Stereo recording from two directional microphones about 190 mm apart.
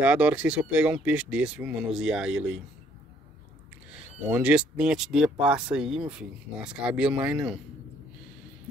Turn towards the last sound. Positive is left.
turn(degrees=-5)  # may be behind; listen again after turning